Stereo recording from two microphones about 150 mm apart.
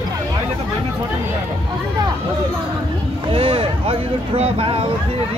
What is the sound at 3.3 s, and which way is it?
Vehicle, 35° right (ahead or behind).